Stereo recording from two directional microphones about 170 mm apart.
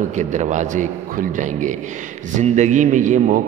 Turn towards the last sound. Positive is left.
turn(degrees=-50)  # may be behind; listen again after turning